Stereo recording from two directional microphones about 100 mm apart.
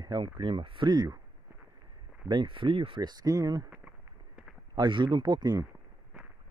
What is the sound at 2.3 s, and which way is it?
Speech, 55° right (ahead or behind).